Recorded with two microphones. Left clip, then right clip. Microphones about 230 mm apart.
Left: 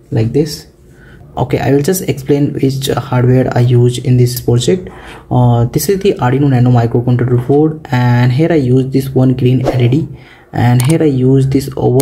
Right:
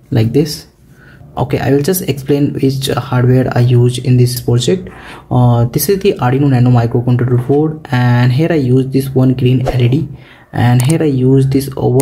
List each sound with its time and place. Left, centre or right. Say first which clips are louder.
0.1 s speech: even; centre
1.3 s speech: left 1 dB; centre